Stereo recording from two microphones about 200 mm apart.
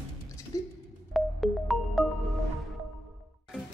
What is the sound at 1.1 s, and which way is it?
Music, centre (ahead or behind).